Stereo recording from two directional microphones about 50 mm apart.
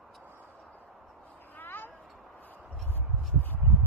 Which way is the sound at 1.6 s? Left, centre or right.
Left.